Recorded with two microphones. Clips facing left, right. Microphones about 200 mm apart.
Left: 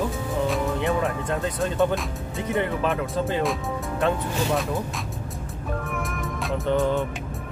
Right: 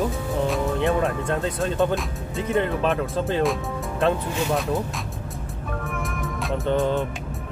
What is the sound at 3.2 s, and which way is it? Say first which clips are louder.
Music: right 3 dB; centre (ahead or behind).